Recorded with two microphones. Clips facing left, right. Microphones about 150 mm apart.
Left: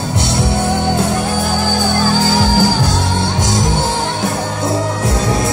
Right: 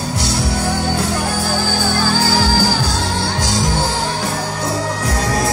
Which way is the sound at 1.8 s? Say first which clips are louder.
Left 3 dB; 20° left (ahead or behind).